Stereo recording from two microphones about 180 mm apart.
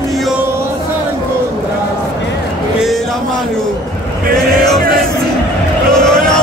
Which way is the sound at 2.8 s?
Centre (ahead or behind).